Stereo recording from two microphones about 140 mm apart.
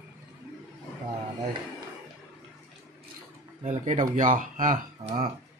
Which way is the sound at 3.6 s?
60° right (ahead or behind).